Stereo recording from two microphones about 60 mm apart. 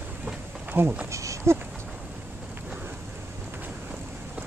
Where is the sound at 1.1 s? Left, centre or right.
Right.